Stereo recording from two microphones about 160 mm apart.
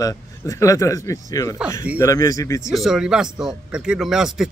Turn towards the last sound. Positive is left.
turn(degrees=-5)  # may be behind; listen again after turning